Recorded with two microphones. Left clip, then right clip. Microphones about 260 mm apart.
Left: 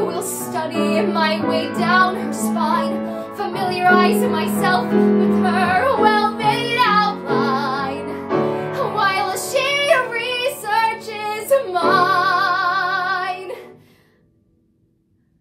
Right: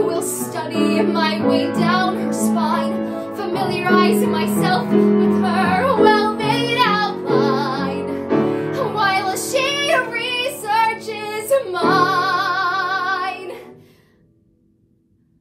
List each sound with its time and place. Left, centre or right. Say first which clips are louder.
0.1 s music: right 1 dB; centre